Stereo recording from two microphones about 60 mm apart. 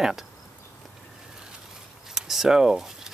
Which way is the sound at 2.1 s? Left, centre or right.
Centre.